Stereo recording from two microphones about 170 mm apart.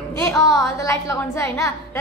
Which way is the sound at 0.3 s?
20° left (ahead or behind).